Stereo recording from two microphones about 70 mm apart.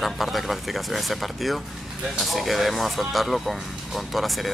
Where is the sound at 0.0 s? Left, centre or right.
Centre.